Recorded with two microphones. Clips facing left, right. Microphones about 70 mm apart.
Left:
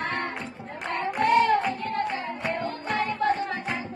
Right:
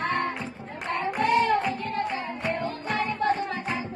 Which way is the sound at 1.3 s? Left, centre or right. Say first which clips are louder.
Left 2 dB; centre.